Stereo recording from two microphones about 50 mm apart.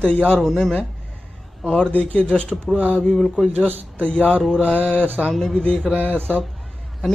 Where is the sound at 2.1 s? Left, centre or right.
Centre.